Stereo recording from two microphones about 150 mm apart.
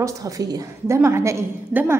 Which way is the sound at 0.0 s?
20° right (ahead or behind).